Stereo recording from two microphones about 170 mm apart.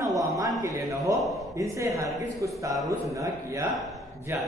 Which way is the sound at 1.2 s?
Centre (ahead or behind).